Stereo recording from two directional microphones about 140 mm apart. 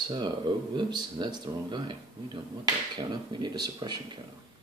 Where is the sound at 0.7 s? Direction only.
30° right (ahead or behind).